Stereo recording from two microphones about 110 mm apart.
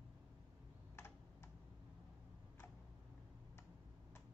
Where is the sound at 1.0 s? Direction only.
20° left (ahead or behind).